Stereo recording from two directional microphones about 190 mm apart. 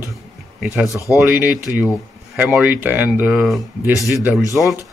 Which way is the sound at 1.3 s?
10° right (ahead or behind).